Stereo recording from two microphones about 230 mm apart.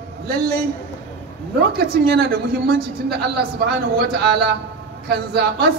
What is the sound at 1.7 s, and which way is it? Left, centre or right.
A man's voice, right.